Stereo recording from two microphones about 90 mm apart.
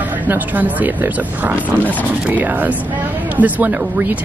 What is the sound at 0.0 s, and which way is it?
Speech, 20° right (ahead or behind).